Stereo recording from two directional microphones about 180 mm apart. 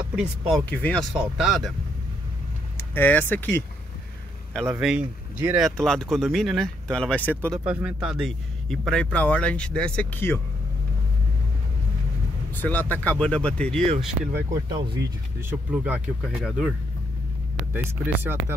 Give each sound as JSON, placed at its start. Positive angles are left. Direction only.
{"t": 0.1, "sound": "speech", "side_deg": -5}
{"t": 2.8, "sound": "speech", "side_deg": 10}
{"t": 4.7, "sound": "speech", "side_deg": -5}
{"t": 5.8, "sound": "speech", "side_deg": 5}
{"t": 7.6, "sound": "speech", "side_deg": -5}
{"t": 12.5, "sound": "speech", "side_deg": 10}
{"t": 14.3, "sound": "speech", "side_deg": -20}
{"t": 15.7, "sound": "speech", "side_deg": -10}
{"t": 17.7, "sound": "speech", "side_deg": -10}